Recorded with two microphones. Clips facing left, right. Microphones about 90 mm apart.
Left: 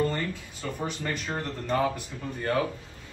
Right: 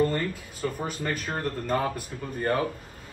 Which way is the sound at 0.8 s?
45° right (ahead or behind).